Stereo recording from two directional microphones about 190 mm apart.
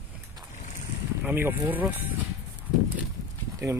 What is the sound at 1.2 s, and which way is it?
Speech, 10° right (ahead or behind).